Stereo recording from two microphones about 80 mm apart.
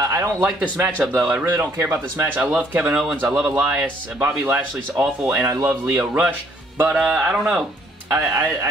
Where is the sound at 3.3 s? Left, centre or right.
Centre.